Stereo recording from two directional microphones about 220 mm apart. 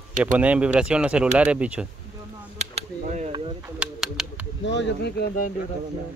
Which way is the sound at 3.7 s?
5° right (ahead or behind).